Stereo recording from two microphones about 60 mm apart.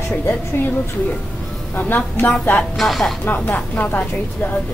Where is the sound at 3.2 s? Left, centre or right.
Left.